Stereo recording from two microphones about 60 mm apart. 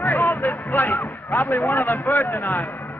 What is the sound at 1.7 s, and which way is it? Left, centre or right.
Speech, left.